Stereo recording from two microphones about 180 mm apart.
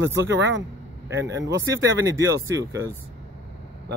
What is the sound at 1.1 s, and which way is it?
Speech, 80° right.